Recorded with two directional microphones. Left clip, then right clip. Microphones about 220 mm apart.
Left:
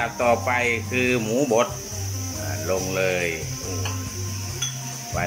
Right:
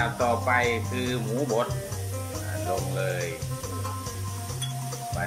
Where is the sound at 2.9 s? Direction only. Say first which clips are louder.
Left 7 dB; 5° left (ahead or behind).